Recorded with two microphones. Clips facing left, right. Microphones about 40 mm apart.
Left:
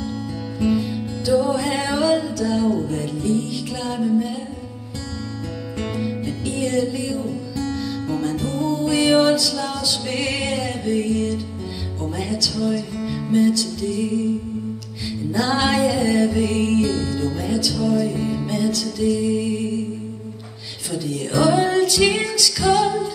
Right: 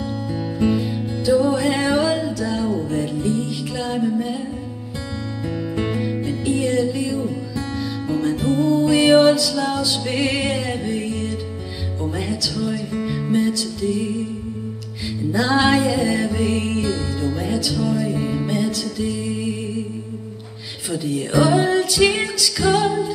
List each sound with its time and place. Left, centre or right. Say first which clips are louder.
0.6 s music: even; centre
3.9 s music: left 2 dB; centre
5.8 s music: right 1 dB; centre
15.3 s music: right 3 dB; centre
20.9 s music: right 3 dB; centre